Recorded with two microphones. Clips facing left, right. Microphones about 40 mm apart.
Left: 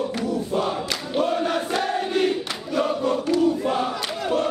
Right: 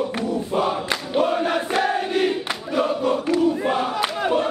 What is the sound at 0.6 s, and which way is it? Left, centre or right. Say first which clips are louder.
Choir: right 2 dB; centre.